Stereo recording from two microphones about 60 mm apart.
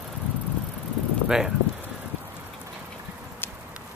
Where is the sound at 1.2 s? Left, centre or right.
Centre.